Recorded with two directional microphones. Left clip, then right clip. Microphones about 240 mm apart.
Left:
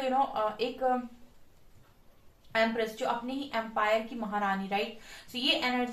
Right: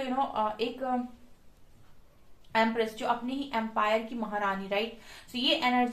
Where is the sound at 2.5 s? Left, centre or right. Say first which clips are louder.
Right 1 dB; right.